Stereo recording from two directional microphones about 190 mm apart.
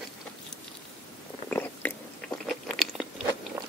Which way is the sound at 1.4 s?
10° left (ahead or behind).